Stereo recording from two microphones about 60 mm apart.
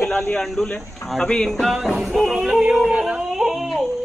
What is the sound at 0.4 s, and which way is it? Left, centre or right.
Speech, centre.